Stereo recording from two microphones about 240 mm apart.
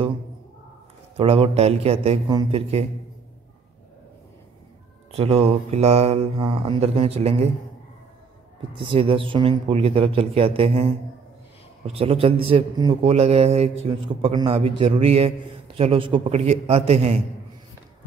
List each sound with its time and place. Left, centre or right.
1.1 s a man's voice: right
5.1 s a man's voice: right
8.7 s a man's voice: right